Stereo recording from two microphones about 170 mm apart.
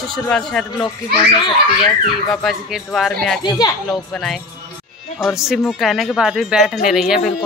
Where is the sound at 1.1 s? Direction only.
30° left (ahead or behind).